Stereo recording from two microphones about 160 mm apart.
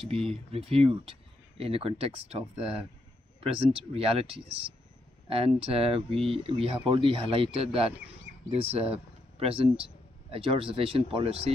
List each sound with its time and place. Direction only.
0.0 s speech: 40° right (ahead or behind)